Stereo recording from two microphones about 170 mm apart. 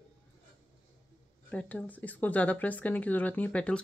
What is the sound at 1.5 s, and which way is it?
Speech, 10° left (ahead or behind).